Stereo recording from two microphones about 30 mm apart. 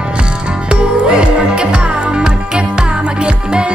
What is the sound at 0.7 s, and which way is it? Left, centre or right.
Music, right.